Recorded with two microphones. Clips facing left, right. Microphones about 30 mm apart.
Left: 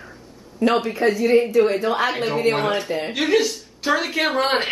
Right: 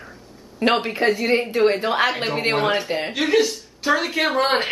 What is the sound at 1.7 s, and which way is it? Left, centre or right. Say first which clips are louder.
Speech: even; right.